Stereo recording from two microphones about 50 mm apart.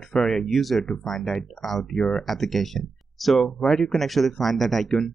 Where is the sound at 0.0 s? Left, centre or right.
Centre.